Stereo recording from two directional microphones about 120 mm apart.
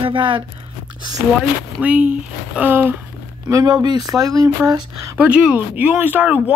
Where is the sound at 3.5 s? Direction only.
30° right (ahead or behind).